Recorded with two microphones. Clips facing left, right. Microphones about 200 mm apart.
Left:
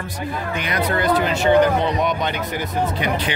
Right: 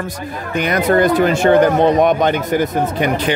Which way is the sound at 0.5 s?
45° right (ahead or behind).